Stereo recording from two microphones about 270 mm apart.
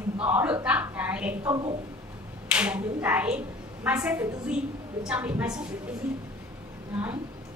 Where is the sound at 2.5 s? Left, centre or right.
Centre.